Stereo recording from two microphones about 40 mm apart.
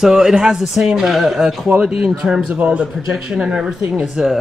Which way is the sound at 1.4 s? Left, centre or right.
Centre.